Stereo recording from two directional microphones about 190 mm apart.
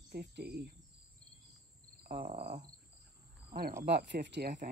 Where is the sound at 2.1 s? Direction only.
35° right (ahead or behind).